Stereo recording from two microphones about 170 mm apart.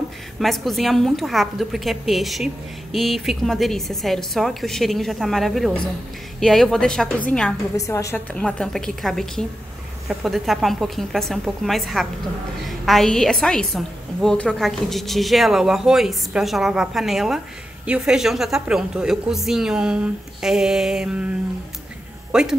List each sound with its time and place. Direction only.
0.4 s a woman's voice: centre (ahead or behind)
7.7 s a woman's voice: 20° left (ahead or behind); by 21.3 s 5° right (ahead or behind)
22.3 s speech: 5° right (ahead or behind)